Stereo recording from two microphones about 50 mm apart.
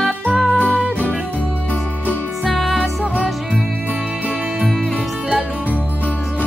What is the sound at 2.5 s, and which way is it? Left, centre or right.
Music, centre.